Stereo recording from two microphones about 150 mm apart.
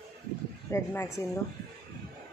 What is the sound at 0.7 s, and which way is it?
Speech, 20° left (ahead or behind).